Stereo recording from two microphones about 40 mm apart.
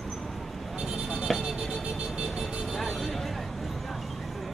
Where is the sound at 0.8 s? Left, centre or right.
Centre.